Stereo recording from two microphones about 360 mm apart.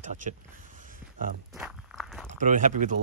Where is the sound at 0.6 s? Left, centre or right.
Right.